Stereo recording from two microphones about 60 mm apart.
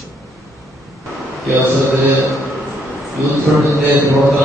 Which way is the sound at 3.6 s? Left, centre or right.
Right.